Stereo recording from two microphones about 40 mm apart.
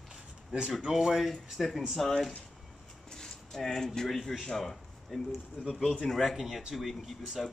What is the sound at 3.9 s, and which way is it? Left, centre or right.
A man's voice, centre.